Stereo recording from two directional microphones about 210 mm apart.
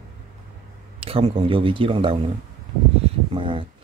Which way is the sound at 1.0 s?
25° right (ahead or behind).